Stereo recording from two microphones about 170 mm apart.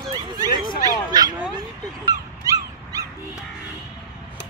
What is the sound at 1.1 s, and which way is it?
Bow-wow, 25° right (ahead or behind).